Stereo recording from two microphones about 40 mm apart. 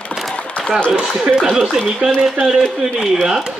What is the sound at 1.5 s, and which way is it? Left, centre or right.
Speech, centre.